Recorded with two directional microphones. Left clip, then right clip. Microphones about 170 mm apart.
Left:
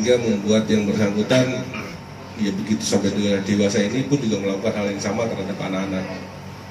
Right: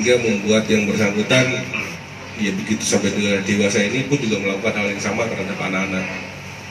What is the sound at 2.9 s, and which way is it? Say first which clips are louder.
Speech: right 2 dB; 15° right (ahead or behind).